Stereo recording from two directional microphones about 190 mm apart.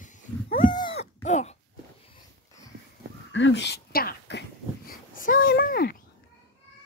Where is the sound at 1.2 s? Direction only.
35° left (ahead or behind).